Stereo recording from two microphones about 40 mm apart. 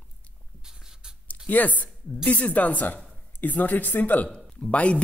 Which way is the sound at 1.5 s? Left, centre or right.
Left.